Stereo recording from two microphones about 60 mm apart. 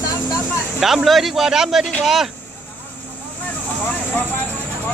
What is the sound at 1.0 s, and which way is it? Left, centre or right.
Speech, centre.